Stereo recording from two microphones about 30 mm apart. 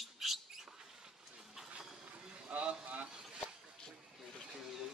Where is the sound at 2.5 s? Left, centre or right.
Right.